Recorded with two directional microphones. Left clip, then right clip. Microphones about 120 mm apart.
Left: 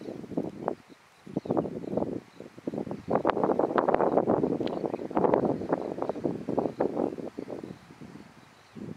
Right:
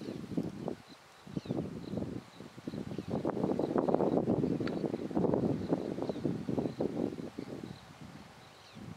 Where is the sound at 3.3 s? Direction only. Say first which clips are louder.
Left 5 dB; 50° left (ahead or behind).